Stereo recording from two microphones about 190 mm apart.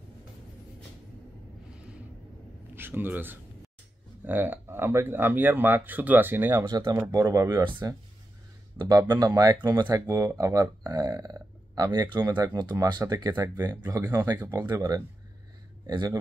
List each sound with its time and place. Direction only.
2.7 s speech: 10° right (ahead or behind)